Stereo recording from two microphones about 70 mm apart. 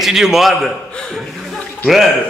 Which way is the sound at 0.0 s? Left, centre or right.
Centre.